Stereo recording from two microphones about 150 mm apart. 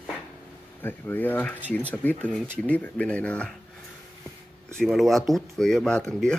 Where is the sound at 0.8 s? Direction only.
15° left (ahead or behind).